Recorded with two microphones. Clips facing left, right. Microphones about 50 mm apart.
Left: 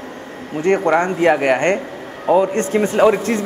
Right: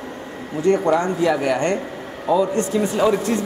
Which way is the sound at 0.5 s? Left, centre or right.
Left.